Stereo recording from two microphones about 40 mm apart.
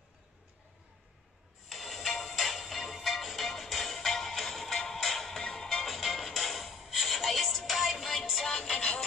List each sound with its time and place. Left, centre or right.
1.7 s music: centre
8.7 s music: left